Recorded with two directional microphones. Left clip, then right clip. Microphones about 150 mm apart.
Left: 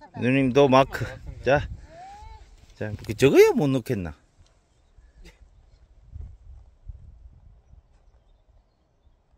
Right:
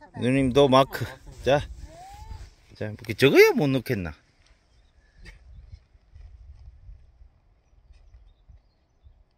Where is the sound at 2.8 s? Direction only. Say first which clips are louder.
Even; 10° left (ahead or behind).